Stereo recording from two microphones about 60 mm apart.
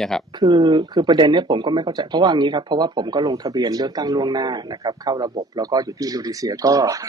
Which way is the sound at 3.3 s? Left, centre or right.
Right.